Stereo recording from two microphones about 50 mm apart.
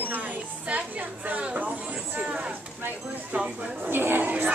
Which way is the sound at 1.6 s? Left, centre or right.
Right.